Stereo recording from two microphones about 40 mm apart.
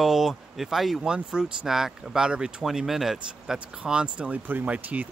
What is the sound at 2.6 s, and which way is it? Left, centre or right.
Speech, centre.